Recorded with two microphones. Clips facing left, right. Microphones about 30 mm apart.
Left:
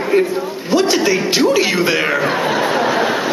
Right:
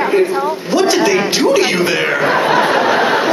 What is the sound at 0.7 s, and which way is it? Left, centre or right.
A woman's voice, centre.